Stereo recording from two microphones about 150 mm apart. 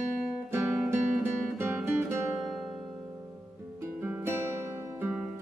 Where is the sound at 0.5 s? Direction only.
15° right (ahead or behind).